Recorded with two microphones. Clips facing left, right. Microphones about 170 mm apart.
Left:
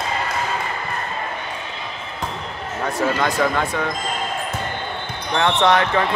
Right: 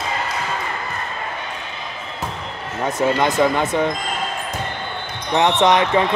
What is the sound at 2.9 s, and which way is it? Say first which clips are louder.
Speech: right 3 dB; 20° right (ahead or behind).